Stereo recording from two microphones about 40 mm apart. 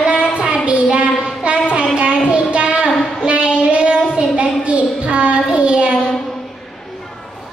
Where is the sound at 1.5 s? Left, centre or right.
Right.